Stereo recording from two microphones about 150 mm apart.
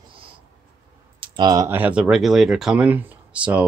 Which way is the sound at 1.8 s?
10° right (ahead or behind).